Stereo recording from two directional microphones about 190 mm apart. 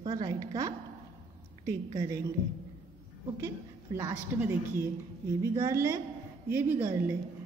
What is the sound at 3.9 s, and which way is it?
Speech, 10° right (ahead or behind).